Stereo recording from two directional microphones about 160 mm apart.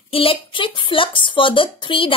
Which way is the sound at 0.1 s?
35° left (ahead or behind).